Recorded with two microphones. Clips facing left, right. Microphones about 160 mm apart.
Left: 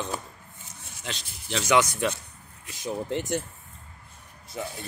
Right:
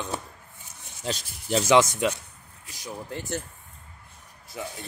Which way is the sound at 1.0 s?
35° right (ahead or behind).